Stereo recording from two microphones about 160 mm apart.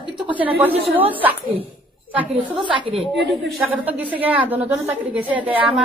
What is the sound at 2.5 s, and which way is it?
Speech, 35° right (ahead or behind).